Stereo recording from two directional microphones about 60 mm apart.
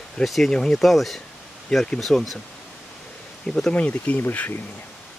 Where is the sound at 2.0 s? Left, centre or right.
Centre.